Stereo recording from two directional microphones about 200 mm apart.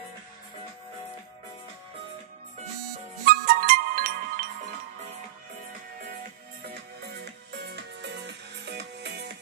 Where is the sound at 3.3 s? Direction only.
45° right (ahead or behind).